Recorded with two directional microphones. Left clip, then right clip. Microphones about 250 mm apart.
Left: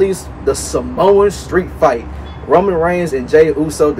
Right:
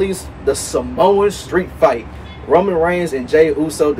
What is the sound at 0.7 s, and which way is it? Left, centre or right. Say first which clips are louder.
A man's voice: left 2 dB; centre.